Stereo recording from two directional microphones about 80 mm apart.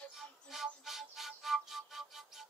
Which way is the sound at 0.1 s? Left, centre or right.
Centre.